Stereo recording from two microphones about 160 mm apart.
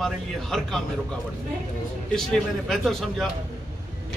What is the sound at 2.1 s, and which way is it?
A man's voice, 5° left (ahead or behind).